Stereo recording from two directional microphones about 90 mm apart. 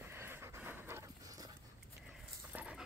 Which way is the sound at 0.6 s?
25° right (ahead or behind).